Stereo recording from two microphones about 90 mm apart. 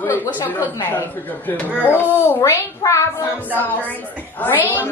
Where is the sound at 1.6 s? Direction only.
20° right (ahead or behind).